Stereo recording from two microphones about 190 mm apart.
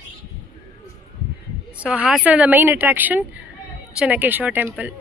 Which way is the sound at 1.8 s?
5° right (ahead or behind).